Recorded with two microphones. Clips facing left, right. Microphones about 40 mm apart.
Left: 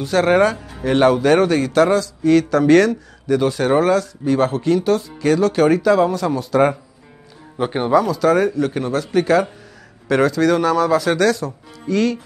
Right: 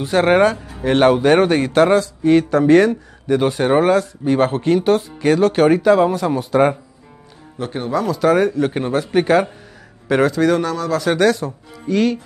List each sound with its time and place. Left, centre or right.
0.0 s speech: right
0.6 s music: centre
0.8 s speech: right
7.5 s speech: left
8.1 s a man's voice: centre
10.0 s a man's voice: centre
10.5 s speech: centre
11.1 s speech: centre